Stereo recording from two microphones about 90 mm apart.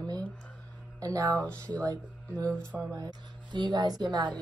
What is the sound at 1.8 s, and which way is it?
Speech, 50° right (ahead or behind).